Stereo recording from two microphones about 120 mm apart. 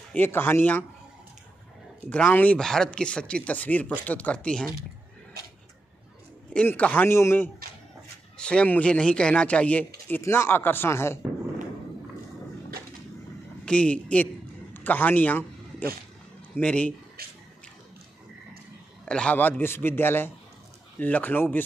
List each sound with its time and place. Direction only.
0.1 s speech: 15° left (ahead or behind)
2.0 s speech: 15° left (ahead or behind)
6.5 s speech: 10° left (ahead or behind)
8.4 s speech: 10° left (ahead or behind)
13.7 s a sound: 10° left (ahead or behind)
16.5 s speech: 10° left (ahead or behind)
19.0 s speech: 10° left (ahead or behind)